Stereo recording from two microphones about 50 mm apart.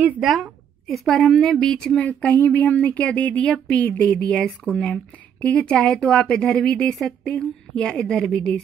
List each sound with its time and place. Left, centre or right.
0.2 s a woman's voice: centre
2.0 s speech: left
5.9 s a woman's voice: centre
6.2 s speech: centre
6.9 s a woman's voice: centre
7.2 s a woman's voice: left